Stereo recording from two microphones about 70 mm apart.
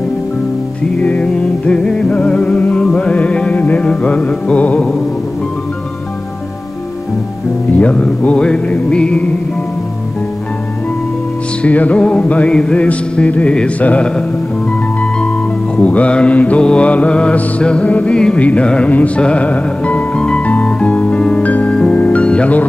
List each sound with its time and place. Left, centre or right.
0.9 s music: centre
4.7 s music: centre
7.7 s music: centre
11.6 s music: centre
15.8 s mantra: centre
21.9 s music: centre